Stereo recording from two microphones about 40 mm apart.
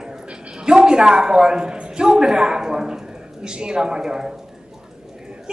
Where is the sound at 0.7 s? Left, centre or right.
Right.